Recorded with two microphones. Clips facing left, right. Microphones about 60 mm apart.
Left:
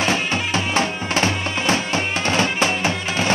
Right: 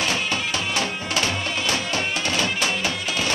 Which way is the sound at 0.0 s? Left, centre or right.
Left.